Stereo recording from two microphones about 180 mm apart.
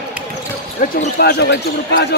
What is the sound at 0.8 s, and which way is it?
Speech, 45° left (ahead or behind).